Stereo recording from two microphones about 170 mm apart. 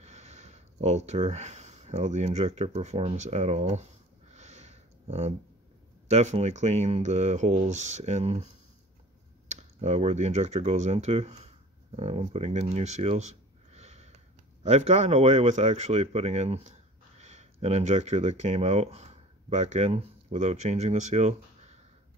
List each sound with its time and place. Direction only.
0.0 s a sound: 40° right (ahead or behind)
6.0 s speech: 40° right (ahead or behind)
9.5 s speech: 40° right (ahead or behind)